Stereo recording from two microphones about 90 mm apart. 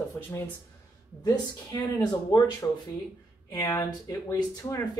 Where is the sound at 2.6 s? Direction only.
25° left (ahead or behind).